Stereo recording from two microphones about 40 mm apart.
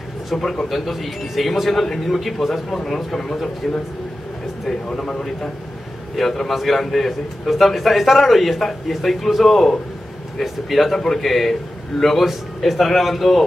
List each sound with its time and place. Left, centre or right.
0.3 s speech: centre
3.6 s speech: centre
4.8 s speech: centre
6.1 s speech: centre